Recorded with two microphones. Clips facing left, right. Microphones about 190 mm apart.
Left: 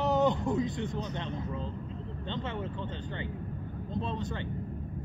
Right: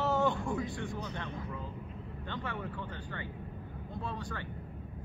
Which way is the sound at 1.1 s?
25° left (ahead or behind).